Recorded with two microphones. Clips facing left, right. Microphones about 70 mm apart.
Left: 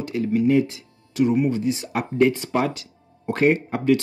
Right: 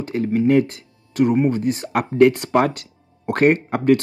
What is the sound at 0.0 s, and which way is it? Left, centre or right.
Speech, right.